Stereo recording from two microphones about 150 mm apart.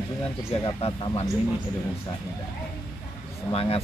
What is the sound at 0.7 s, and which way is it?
Speech, 40° left (ahead or behind).